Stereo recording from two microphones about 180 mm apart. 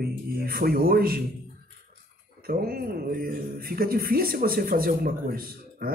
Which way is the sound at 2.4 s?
55° right (ahead or behind).